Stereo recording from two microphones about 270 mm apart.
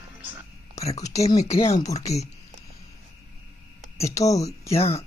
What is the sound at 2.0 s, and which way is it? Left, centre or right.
Speech, left.